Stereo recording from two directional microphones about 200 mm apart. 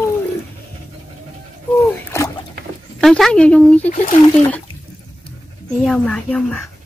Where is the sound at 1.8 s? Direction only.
15° left (ahead or behind).